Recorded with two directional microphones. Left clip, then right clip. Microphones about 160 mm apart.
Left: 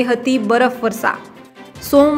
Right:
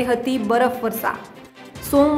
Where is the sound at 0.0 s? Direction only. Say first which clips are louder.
Left 4 dB; 15° left (ahead or behind).